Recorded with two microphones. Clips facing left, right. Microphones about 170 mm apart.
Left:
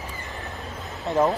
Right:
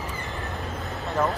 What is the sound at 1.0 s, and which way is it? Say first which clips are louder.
Speech: left 4 dB; 20° left (ahead or behind).